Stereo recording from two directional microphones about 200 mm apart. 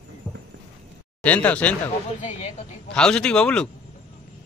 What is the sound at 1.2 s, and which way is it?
Speech, 5° left (ahead or behind).